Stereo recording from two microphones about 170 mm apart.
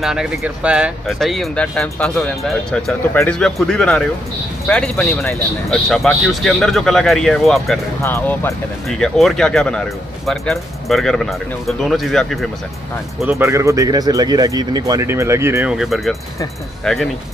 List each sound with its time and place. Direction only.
0.0 s speech: centre (ahead or behind)
5.7 s speech: centre (ahead or behind)
8.0 s speech: 15° left (ahead or behind)
8.8 s speech: 5° left (ahead or behind)
13.3 s speech: 15° right (ahead or behind)
15.7 s speech: centre (ahead or behind)